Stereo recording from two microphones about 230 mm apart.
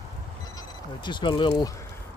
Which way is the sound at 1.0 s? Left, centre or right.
Centre.